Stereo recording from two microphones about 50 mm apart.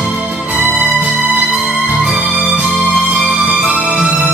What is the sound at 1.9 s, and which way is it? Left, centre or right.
Music, centre.